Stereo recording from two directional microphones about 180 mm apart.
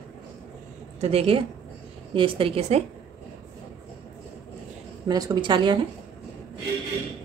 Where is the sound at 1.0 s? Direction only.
35° right (ahead or behind).